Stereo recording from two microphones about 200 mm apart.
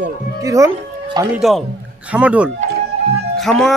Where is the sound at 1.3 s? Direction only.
Centre (ahead or behind).